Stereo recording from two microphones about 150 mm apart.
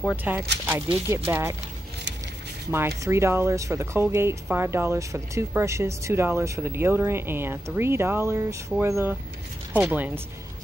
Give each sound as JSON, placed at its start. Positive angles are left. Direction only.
{"t": 0.1, "sound": "speech", "side_deg": -10}
{"t": 3.0, "sound": "speech", "side_deg": -20}